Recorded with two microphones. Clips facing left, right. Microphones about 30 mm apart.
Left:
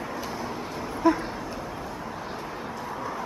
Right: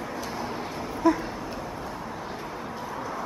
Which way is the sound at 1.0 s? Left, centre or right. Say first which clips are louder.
Even; centre.